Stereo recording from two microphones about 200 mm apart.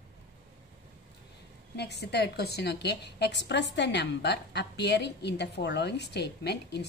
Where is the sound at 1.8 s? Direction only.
55° left (ahead or behind).